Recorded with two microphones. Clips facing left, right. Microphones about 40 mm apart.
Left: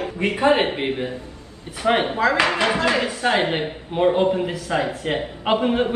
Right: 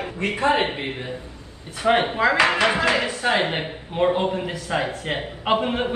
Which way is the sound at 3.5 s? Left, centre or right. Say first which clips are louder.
Left 3 dB; centre.